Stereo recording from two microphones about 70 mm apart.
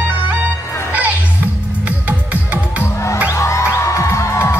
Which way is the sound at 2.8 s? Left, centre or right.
Left.